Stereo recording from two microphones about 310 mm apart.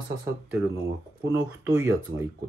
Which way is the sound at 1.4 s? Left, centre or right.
Centre.